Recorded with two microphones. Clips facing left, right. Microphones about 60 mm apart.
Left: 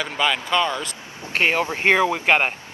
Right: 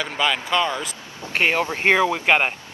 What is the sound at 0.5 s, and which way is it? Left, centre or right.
Speech, centre.